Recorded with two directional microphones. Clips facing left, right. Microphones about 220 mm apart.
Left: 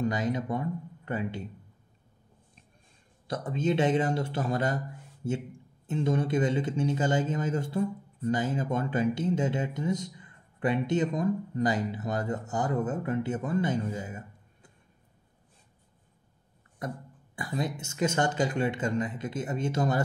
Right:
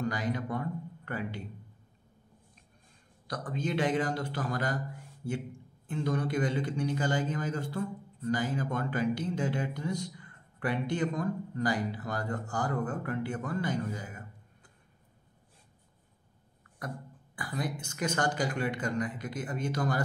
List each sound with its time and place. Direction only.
0.0 s speech: 20° left (ahead or behind)
3.3 s a man's voice: 25° left (ahead or behind)
17.4 s a man's voice: 25° left (ahead or behind)